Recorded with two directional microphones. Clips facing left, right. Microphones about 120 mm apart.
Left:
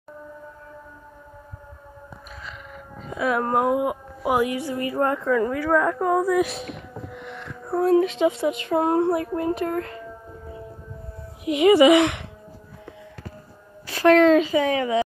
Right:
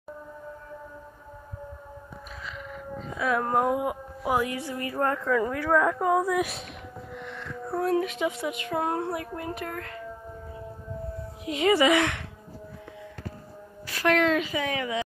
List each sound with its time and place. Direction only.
3.1 s a woman's voice: 5° left (ahead or behind)
5.3 s speech: centre (ahead or behind)
7.2 s a sound: 15° left (ahead or behind)
7.9 s speech: 25° left (ahead or behind)
11.4 s speech: 15° left (ahead or behind)
13.8 s a woman's voice: 30° left (ahead or behind)